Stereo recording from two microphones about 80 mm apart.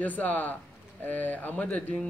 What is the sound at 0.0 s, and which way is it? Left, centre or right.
Speech, left.